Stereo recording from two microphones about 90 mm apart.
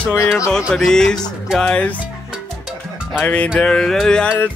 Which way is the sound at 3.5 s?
10° left (ahead or behind).